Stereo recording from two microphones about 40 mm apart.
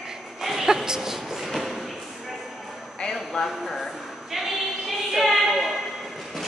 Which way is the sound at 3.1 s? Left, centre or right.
Centre.